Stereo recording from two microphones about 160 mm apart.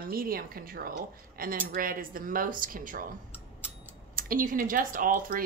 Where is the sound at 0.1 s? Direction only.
65° right (ahead or behind).